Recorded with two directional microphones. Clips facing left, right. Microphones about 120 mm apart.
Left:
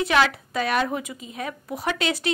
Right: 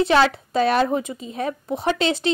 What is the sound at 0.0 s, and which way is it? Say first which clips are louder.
A woman's voice: right 4 dB; 30° right (ahead or behind).